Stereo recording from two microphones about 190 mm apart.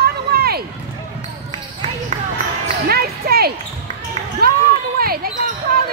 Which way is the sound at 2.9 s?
55° right (ahead or behind).